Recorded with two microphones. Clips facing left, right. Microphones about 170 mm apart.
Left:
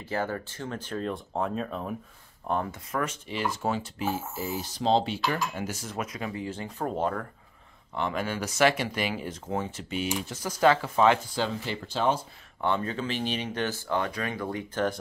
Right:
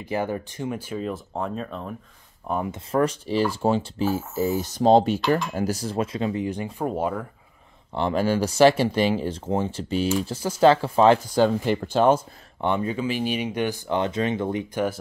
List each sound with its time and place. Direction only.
0.0 s speech: 15° right (ahead or behind)
2.7 s speech: 35° right (ahead or behind)
4.6 s speech: 50° right (ahead or behind); by 7.2 s 10° right (ahead or behind)
7.9 s speech: 35° right (ahead or behind)
11.3 s speech: 50° right (ahead or behind)
12.5 s speech: 15° right (ahead or behind)